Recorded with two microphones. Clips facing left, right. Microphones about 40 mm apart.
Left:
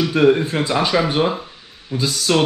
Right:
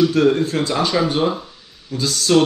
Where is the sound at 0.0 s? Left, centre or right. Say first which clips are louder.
Even; left.